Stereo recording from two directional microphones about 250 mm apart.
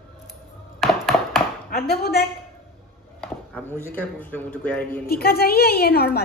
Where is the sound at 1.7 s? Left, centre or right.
Left.